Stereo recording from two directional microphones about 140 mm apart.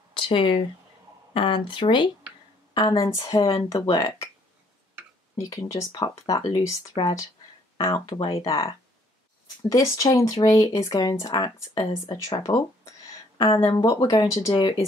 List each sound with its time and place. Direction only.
0.1 s speech: 35° left (ahead or behind)
5.4 s speech: 20° left (ahead or behind)
13.7 s speech: 30° left (ahead or behind)